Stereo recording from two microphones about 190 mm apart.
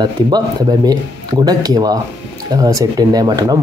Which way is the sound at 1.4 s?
20° right (ahead or behind).